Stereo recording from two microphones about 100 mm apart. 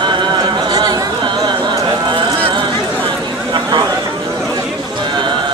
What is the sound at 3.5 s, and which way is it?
Chatter, 40° right (ahead or behind).